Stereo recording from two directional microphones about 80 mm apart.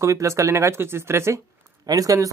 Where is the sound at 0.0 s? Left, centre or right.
Right.